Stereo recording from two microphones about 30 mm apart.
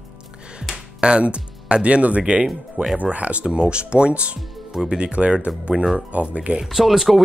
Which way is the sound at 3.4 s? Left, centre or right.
Right.